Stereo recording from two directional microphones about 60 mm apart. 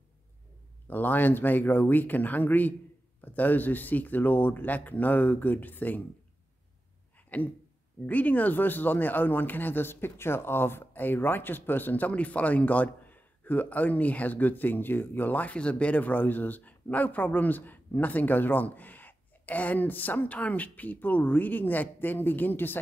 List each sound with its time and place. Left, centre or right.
0.8 s speech: left
7.3 s speech: left